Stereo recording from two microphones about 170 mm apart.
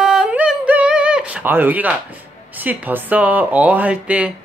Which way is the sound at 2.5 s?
10° right (ahead or behind).